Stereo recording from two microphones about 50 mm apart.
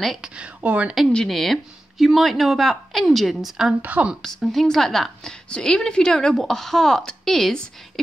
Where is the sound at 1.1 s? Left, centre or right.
Centre.